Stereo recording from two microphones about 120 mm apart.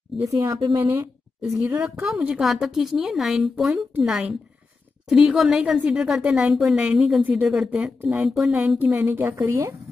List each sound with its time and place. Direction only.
0.1 s a woman's voice: centre (ahead or behind)
0.7 s speech: 30° right (ahead or behind)
1.4 s speech: 15° right (ahead or behind)
2.0 s a woman's voice: 5° right (ahead or behind); by 9.8 s 25° right (ahead or behind)